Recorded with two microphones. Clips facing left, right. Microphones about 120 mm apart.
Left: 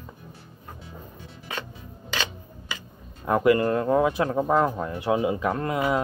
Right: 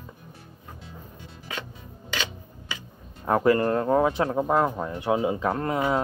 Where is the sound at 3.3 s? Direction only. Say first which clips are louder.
Left 1 dB; 35° right (ahead or behind).